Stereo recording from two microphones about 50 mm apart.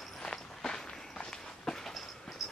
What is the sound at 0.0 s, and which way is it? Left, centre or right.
Walk, centre.